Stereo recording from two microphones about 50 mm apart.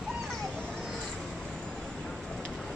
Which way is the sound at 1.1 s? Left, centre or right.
Centre.